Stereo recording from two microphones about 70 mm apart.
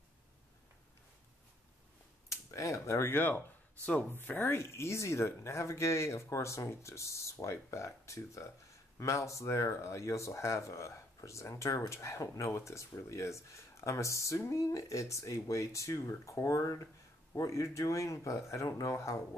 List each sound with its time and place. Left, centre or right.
2.2 s speech: left